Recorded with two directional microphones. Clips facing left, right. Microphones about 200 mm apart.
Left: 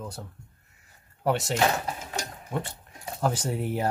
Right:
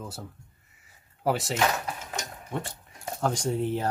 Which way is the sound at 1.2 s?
Centre (ahead or behind).